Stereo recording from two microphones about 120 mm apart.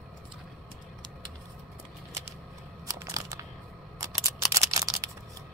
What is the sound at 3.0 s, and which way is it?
Crunch, 25° right (ahead or behind).